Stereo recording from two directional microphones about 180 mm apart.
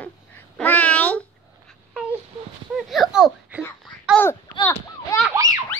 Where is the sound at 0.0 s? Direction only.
10° left (ahead or behind).